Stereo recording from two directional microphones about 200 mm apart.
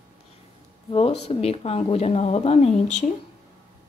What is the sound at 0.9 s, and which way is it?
Speech, 30° left (ahead or behind).